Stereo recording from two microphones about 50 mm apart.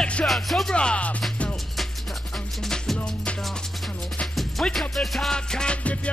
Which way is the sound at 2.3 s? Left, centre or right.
Centre.